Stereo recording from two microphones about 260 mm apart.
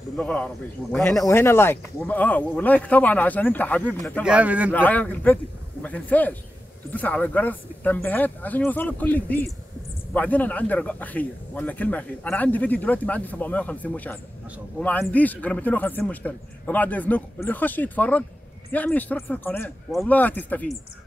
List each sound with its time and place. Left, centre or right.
0.2 s a man's voice: centre
4.7 s a man's voice: centre